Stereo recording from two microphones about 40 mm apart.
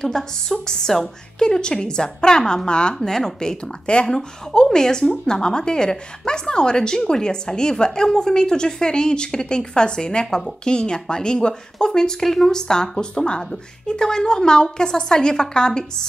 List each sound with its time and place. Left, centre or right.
0.0 s a woman's voice: centre
3.0 s a woman's voice: centre